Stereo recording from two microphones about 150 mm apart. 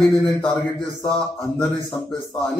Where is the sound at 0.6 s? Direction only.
Centre (ahead or behind).